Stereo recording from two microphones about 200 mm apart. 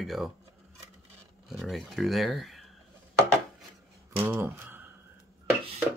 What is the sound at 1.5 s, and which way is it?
Speech, centre (ahead or behind).